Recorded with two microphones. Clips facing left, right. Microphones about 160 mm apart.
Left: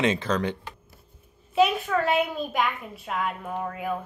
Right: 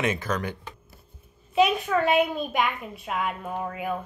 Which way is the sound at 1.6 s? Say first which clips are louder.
Even; 10° right (ahead or behind).